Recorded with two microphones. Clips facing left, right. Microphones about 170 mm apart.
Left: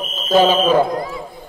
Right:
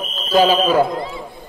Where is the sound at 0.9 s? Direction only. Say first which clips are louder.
Left 2 dB; 25° right (ahead or behind).